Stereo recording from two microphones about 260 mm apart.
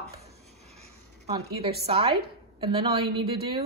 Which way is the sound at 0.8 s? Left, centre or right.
Right.